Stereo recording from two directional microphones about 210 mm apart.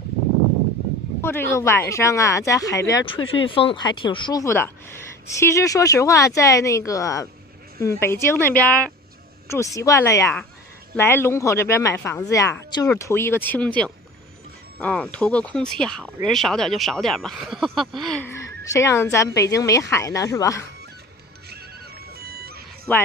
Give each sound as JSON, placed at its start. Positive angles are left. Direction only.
{"t": 1.2, "sound": "a woman's voice", "side_deg": 10}
{"t": 3.2, "sound": "speech", "side_deg": 65}
{"t": 3.4, "sound": "a woman's voice", "side_deg": 25}
{"t": 22.1, "sound": "music", "side_deg": -45}
{"t": 22.9, "sound": "a woman's voice", "side_deg": 10}